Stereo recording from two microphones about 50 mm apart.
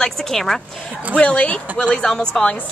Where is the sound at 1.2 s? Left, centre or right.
Left.